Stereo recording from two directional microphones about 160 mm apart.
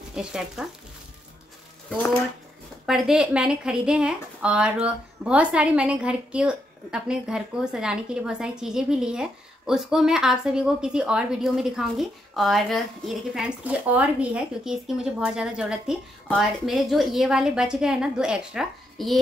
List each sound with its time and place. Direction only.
0.1 s a woman's voice: 5° right (ahead or behind)
2.9 s a woman's voice: 5° right (ahead or behind)